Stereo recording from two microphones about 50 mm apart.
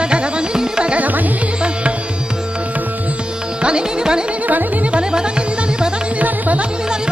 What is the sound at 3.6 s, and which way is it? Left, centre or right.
Music, centre.